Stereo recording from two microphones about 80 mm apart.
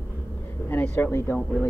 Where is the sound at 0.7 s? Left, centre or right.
Left.